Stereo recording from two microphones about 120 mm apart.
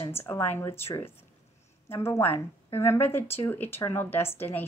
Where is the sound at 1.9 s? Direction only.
20° left (ahead or behind).